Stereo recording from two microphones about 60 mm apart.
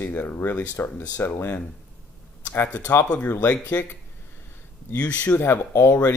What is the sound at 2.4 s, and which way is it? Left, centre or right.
Speech, left.